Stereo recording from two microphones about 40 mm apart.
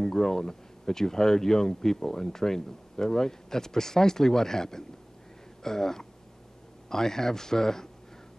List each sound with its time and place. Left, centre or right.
0.0 s speech: centre